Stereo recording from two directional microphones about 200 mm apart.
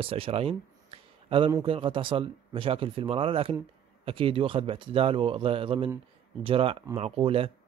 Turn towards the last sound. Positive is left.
turn(degrees=-30)  # may be behind; listen again after turning